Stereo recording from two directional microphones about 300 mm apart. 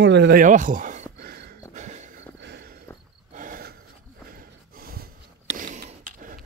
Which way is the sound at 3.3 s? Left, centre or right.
Right.